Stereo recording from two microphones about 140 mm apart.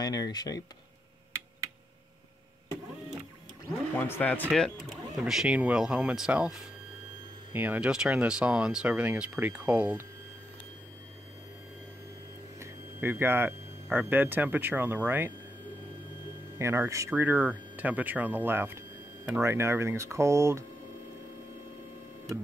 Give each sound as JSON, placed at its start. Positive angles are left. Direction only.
{"t": 0.0, "sound": "speech", "side_deg": 25}
{"t": 3.9, "sound": "speech", "side_deg": 10}
{"t": 12.5, "sound": "a sound", "side_deg": -20}
{"t": 13.9, "sound": "speech", "side_deg": -15}
{"t": 16.5, "sound": "speech", "side_deg": -20}